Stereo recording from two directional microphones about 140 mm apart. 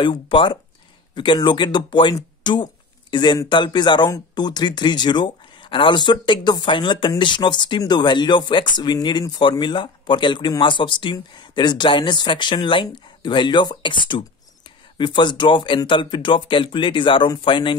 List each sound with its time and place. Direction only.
0.0 s speech: 35° left (ahead or behind)